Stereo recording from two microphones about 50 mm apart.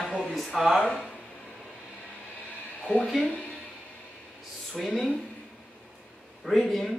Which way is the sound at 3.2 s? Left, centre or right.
Left.